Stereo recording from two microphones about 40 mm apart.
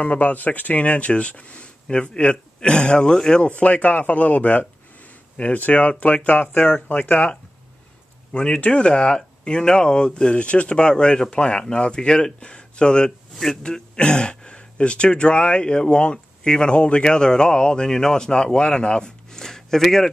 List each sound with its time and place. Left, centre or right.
0.0 s speech: left
3.4 s speech: left
19.3 s a sound: centre